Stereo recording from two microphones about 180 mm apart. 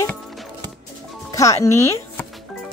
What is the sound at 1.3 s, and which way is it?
Speech, 15° left (ahead or behind).